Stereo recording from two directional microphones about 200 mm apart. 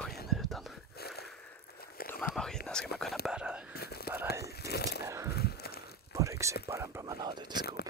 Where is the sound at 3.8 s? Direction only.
50° left (ahead or behind).